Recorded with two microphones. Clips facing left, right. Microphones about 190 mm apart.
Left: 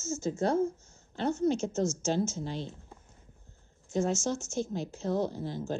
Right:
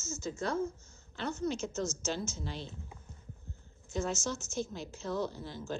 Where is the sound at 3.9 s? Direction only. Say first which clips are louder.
Left 5 dB; 50° left (ahead or behind).